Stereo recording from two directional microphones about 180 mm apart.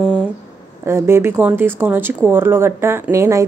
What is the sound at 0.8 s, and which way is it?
A woman's voice, 15° right (ahead or behind).